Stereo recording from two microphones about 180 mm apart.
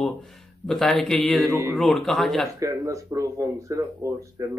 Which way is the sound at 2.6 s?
15° right (ahead or behind).